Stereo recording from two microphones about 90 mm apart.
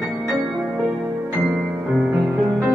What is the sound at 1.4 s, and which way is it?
Music, 5° right (ahead or behind).